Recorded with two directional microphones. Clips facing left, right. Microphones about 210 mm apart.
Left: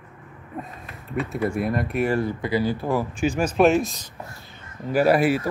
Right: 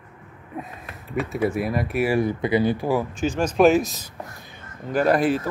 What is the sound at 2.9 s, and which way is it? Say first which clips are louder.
Speech: even; 5° left (ahead or behind).